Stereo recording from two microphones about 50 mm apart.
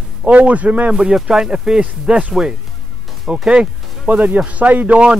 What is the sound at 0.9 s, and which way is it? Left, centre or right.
Speech, centre.